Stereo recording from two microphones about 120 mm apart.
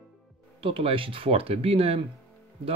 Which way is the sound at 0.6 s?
50° right (ahead or behind).